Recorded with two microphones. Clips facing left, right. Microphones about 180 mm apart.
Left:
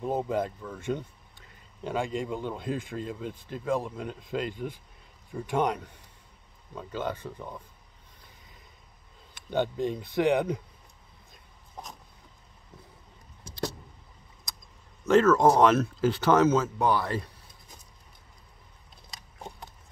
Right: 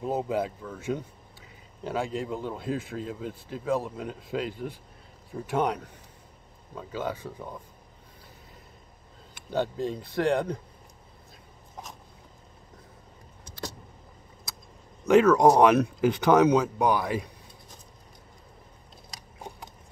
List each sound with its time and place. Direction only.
0.0 s speech: 5° right (ahead or behind)
9.3 s speech: centre (ahead or behind)
14.5 s vehicle: 5° right (ahead or behind)
15.0 s speech: 15° right (ahead or behind)